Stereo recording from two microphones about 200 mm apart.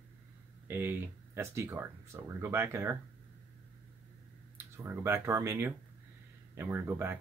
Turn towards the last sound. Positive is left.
turn(degrees=-10)  # may be behind; listen again after turning